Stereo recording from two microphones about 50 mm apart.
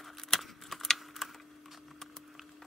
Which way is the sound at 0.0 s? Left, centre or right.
Centre.